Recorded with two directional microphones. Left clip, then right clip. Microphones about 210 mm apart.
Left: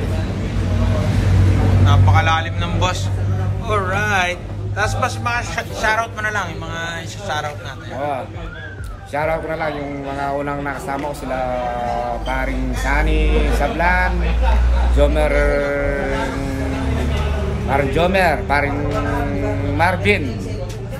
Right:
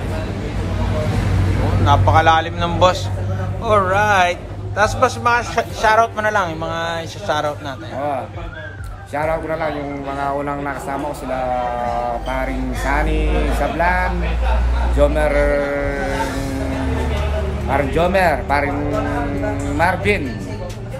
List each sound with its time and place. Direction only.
1.9 s vehicle: 20° right (ahead or behind)
3.6 s a man's voice: 25° right (ahead or behind)
9.1 s speech: centre (ahead or behind)
12.3 s speech: 5° left (ahead or behind)
17.6 s speech: centre (ahead or behind)